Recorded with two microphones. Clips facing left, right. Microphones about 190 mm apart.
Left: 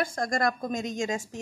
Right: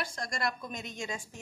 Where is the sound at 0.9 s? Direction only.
90° left.